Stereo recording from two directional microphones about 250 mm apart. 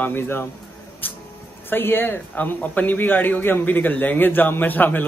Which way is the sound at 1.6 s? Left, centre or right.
Centre.